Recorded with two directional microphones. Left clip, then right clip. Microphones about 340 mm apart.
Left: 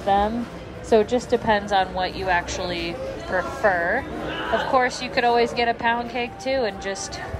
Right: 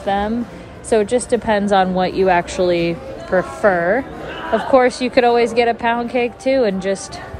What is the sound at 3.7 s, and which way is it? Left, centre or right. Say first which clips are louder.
Speech: right 6 dB; right.